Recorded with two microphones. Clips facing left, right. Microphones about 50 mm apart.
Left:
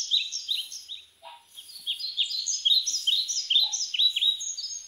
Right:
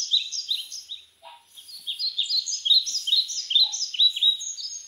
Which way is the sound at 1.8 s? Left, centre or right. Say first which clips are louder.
Even; left.